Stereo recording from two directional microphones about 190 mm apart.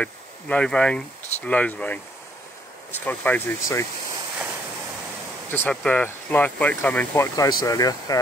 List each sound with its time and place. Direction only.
0.0 s speech: 5° left (ahead or behind)
5.5 s speech: 10° left (ahead or behind)